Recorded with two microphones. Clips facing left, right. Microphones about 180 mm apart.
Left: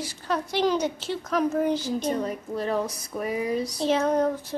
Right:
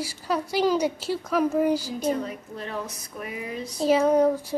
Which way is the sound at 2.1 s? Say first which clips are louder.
Even; 40° left (ahead or behind).